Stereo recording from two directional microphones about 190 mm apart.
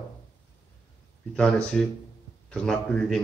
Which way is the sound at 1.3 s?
5° left (ahead or behind).